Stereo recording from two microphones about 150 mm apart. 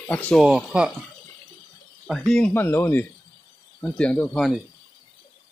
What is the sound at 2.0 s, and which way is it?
Speech, centre (ahead or behind).